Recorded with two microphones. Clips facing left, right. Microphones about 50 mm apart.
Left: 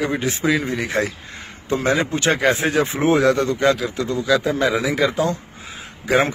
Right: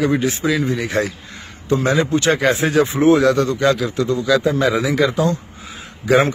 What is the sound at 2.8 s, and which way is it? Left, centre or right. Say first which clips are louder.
Speech: right 6 dB; left.